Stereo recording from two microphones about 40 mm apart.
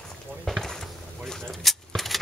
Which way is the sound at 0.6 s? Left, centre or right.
Centre.